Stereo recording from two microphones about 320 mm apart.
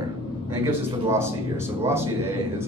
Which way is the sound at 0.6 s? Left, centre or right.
Centre.